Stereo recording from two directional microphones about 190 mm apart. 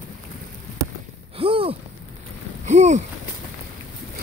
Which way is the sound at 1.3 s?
30° right (ahead or behind).